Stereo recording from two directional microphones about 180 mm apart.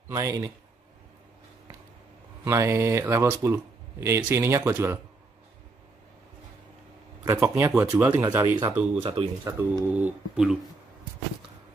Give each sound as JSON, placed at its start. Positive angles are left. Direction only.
{"t": 0.1, "sound": "speech", "side_deg": -20}
{"t": 2.4, "sound": "speech", "side_deg": -15}
{"t": 7.2, "sound": "speech", "side_deg": -15}
{"t": 8.9, "sound": "speech", "side_deg": -30}
{"t": 9.4, "sound": "speech", "side_deg": -10}